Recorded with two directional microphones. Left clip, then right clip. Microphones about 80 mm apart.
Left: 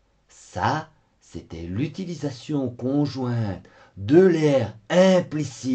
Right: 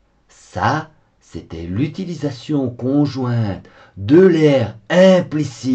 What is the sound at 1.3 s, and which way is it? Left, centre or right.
Speech, left.